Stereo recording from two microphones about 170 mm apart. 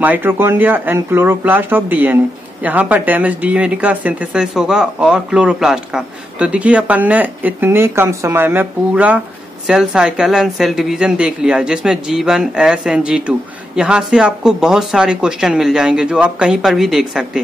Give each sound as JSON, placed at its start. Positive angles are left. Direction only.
{"t": 0.0, "sound": "speech", "side_deg": -10}